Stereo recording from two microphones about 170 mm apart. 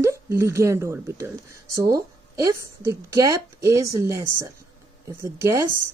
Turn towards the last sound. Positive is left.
turn(degrees=-15)  # may be behind; listen again after turning